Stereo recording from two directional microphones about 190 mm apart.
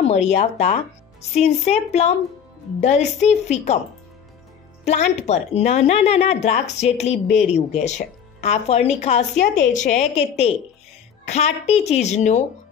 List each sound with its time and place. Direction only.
0.0 s speech: 35° left (ahead or behind)
4.8 s speech: 35° left (ahead or behind)